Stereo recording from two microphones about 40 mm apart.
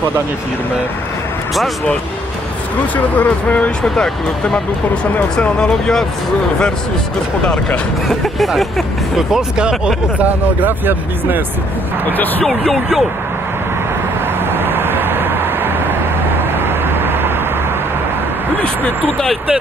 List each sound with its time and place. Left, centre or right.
3.2 s speech: left
3.8 s speech: centre
8.4 s speech: centre
9.6 s speech: centre
10.9 s speech: right
12.1 s speech: left
12.4 s speech: centre
14.4 s vehicle: right